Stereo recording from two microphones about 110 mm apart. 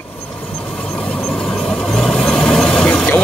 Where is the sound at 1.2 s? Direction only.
5° left (ahead or behind).